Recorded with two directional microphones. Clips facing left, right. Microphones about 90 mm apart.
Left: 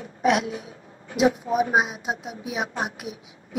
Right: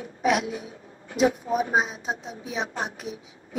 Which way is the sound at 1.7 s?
10° left (ahead or behind).